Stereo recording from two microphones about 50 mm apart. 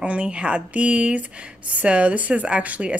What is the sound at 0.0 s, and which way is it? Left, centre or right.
A woman's voice, right.